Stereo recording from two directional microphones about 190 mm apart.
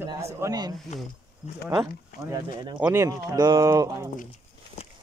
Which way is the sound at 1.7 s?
20° right (ahead or behind).